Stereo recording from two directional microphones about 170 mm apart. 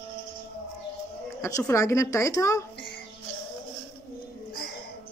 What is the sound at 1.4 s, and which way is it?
Speech, 15° left (ahead or behind).